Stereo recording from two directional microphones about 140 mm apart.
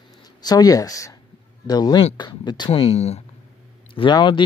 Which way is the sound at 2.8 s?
50° left (ahead or behind).